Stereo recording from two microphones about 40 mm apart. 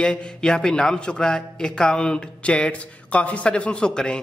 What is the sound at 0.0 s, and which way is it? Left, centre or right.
A man's voice, left.